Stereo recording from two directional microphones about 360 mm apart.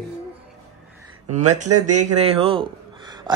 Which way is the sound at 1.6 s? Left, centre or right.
Right.